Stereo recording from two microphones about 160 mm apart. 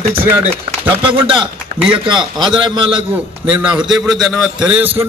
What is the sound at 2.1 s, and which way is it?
Speech, 30° right (ahead or behind).